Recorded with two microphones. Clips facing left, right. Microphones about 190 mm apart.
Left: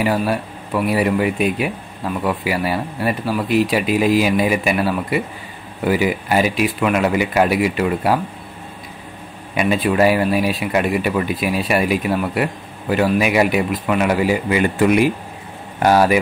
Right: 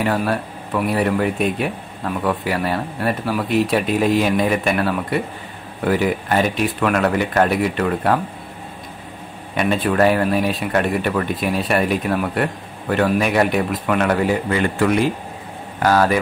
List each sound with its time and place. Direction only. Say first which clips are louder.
0.0 s speech: left 1 dB; 5° left (ahead or behind)
9.6 s speech: left 1 dB; 5° left (ahead or behind)